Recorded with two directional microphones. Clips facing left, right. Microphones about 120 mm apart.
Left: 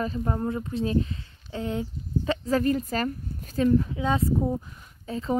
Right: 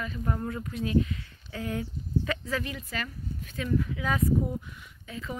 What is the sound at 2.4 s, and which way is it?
Speech, 40° left (ahead or behind).